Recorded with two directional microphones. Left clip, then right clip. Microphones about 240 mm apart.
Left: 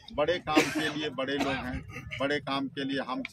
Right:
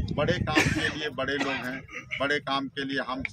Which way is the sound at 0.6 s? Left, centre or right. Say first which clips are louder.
Right 2 dB; left.